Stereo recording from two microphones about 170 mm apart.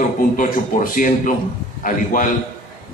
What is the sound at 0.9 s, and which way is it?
A man's voice, 50° left (ahead or behind).